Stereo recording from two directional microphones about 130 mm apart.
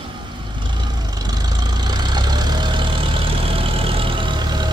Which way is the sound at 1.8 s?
35° right (ahead or behind).